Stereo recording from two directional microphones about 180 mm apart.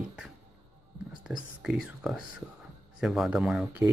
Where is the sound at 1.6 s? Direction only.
5° right (ahead or behind).